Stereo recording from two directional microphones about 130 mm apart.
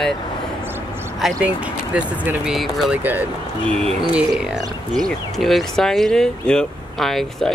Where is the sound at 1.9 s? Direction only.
10° right (ahead or behind).